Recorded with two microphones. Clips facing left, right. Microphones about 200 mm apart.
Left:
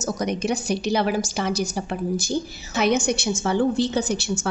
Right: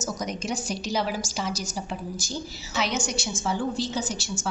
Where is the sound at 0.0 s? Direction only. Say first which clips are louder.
Left 6 dB; 65° left (ahead or behind).